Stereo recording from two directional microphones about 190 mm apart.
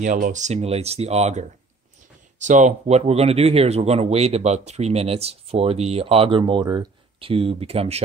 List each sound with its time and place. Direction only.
0.0 s speech: 40° right (ahead or behind)
2.4 s speech: 40° right (ahead or behind)